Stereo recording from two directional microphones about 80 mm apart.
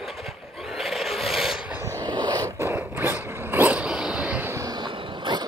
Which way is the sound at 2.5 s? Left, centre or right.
Right.